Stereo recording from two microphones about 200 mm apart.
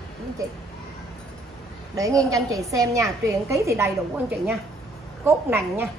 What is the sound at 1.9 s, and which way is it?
A woman's voice, 15° right (ahead or behind).